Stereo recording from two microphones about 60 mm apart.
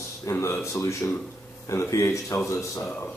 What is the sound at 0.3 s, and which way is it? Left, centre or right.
Speech, left.